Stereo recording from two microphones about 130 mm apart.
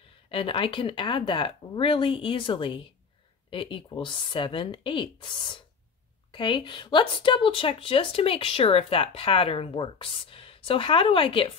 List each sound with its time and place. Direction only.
0.3 s speech: 40° left (ahead or behind)